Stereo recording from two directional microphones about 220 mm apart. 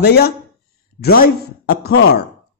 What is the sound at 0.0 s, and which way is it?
Speech, 45° left (ahead or behind).